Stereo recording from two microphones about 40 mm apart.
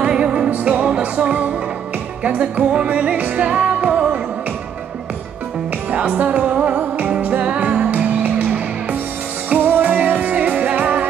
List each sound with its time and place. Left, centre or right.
0.0 s music: right
5.9 s music: right